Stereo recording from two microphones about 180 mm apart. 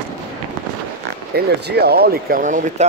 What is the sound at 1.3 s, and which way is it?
Speech, 60° right (ahead or behind).